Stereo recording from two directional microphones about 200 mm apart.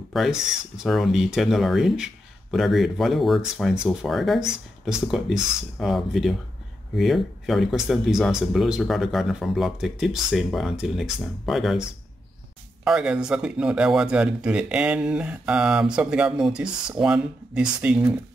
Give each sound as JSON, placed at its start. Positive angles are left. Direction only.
{"t": 0.1, "sound": "speech", "side_deg": 0}
{"t": 12.8, "sound": "speech", "side_deg": -5}